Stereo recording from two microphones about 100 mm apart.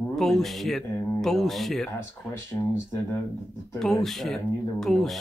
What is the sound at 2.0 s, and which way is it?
Speech, 25° left (ahead or behind).